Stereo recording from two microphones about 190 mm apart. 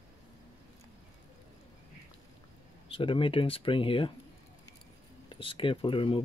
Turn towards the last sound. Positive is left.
turn(degrees=25)  # may be behind; listen again after turning